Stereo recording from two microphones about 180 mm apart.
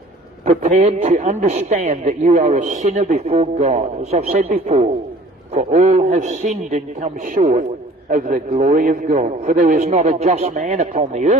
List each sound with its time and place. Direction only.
0.5 s a man's voice: 40° right (ahead or behind)